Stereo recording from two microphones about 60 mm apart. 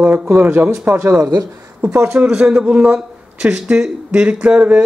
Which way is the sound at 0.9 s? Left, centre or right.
Right.